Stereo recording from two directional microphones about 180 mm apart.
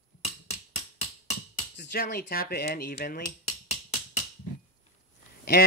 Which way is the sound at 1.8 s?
65° left (ahead or behind).